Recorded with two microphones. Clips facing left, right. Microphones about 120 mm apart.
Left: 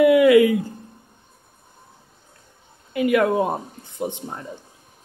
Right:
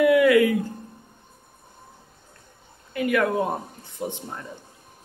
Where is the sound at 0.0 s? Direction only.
15° left (ahead or behind).